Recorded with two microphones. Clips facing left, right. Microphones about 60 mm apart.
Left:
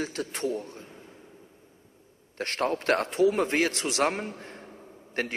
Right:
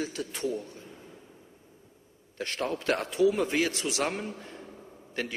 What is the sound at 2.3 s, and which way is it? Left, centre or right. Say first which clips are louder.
A man's voice: left 4 dB; left.